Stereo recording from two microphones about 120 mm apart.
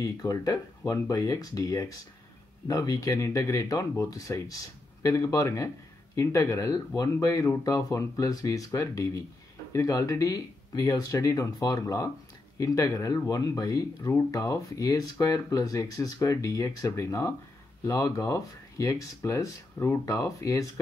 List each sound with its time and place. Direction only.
0.0 s speech: 30° left (ahead or behind)